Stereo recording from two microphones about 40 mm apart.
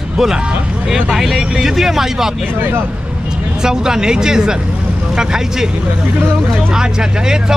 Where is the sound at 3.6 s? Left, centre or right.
Centre.